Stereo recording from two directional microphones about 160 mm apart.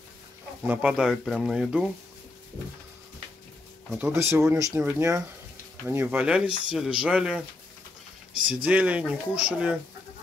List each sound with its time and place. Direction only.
0.7 s speech: 5° right (ahead or behind)
4.1 s speech: 15° right (ahead or behind)
8.6 s speech: 10° right (ahead or behind)